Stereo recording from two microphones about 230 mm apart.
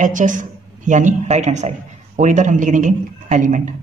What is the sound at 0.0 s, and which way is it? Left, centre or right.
A man's voice, right.